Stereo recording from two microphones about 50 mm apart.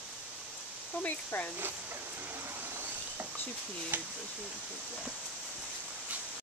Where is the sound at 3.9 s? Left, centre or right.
Right.